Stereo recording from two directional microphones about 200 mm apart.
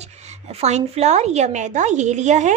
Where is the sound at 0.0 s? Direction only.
35° right (ahead or behind).